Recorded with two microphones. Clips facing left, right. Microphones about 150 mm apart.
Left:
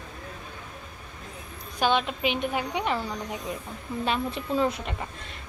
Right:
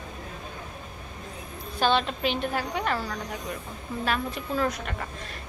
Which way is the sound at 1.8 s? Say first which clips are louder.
Even; 10° left (ahead or behind).